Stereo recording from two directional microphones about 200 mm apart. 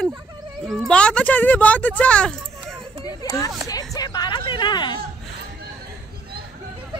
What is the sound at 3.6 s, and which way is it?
Speech, 20° left (ahead or behind).